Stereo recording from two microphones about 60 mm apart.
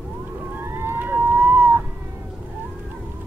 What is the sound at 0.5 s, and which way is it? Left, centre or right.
Whale vocalization, right.